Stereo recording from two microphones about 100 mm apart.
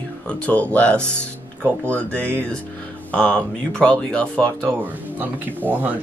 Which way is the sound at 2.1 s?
20° right (ahead or behind).